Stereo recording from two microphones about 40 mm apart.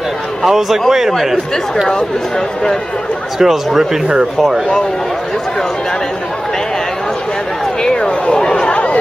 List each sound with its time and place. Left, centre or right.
0.4 s a man's voice: centre
1.9 s speech: centre
3.3 s a man's voice: centre
7.8 s speech: centre
8.6 s chatter: left